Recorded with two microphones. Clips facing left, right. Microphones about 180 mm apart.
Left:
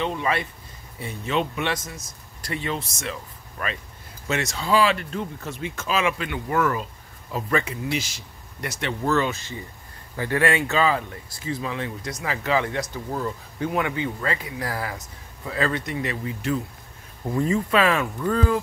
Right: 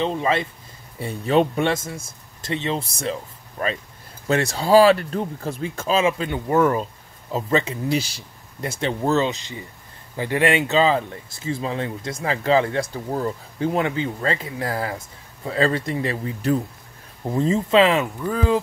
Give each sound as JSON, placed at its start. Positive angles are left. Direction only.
{"t": 0.0, "sound": "speech", "side_deg": -30}
{"t": 1.7, "sound": "speech", "side_deg": -25}
{"t": 17.3, "sound": "speech", "side_deg": -25}